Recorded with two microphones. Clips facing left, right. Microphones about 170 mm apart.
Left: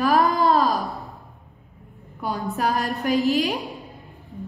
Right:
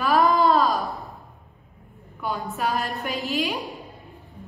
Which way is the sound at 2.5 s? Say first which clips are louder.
Left 4 dB; 40° left (ahead or behind).